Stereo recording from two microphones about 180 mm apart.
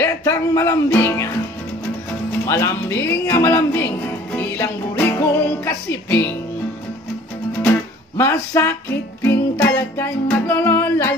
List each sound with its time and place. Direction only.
0.0 s music: 15° left (ahead or behind)
2.4 s speech: 15° left (ahead or behind)
8.2 s music: 15° left (ahead or behind)